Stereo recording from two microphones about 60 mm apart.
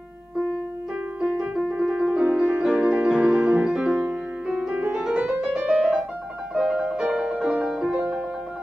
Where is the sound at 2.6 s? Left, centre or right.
Centre.